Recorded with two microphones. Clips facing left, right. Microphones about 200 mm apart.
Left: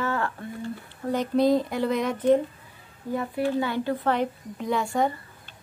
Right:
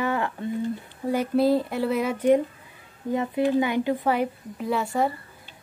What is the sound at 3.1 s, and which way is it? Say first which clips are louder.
A woman's voice: right 3 dB; 20° right (ahead or behind).